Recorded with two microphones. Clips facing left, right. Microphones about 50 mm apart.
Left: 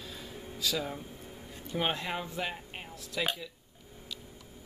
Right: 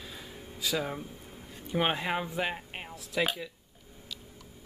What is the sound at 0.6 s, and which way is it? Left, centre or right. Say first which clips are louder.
Speech: right 2 dB; centre.